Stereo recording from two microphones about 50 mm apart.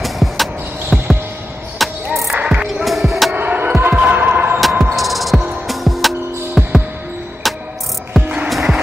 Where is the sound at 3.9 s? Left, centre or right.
Right.